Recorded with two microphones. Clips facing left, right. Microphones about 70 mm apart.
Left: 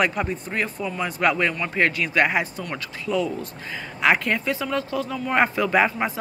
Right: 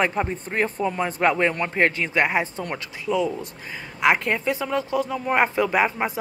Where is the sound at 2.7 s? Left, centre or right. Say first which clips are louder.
Even; centre.